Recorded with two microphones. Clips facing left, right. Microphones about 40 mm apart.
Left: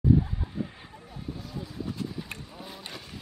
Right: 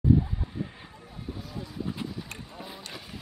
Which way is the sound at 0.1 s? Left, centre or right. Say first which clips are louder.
Even; centre.